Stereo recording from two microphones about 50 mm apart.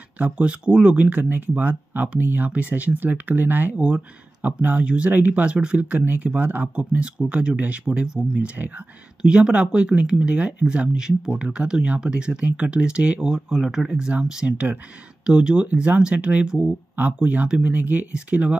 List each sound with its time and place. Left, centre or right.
0.2 s speech: right
3.7 s speech: right
4.4 s speech: right
9.2 s speech: right